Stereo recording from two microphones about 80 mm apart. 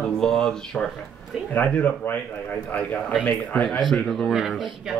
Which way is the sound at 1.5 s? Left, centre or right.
Left.